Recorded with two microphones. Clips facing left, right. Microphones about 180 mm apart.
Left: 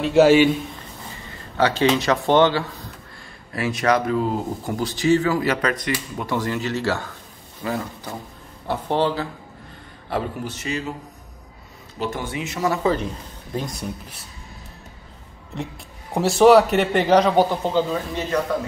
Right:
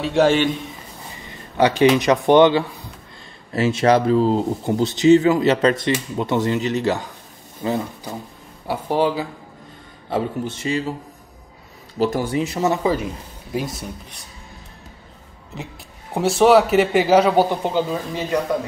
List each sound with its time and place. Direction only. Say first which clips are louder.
0.0 s speech: left 3 dB; 5° left (ahead or behind)
1.2 s speech: right 3 dB; 15° right (ahead or behind)
3.5 s speech: right 4 dB; 25° right (ahead or behind)
8.6 s speech: right 2 dB; 10° right (ahead or behind)
10.0 s speech: right 3 dB; 25° right (ahead or behind)
12.0 s speech: right 7 dB; 40° right (ahead or behind)
12.8 s speech: right 1 dB; 10° right (ahead or behind)
15.5 s speech: left 3 dB; centre (ahead or behind)